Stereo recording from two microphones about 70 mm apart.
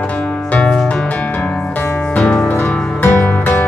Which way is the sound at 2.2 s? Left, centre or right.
Centre.